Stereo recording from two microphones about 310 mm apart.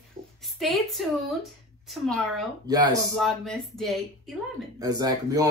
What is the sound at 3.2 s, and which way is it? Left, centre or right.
Speech, centre.